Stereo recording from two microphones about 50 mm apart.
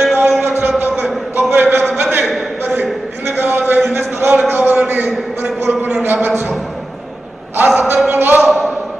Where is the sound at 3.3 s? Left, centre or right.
Right.